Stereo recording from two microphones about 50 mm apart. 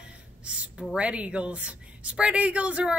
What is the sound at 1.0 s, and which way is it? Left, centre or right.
A woman's voice, right.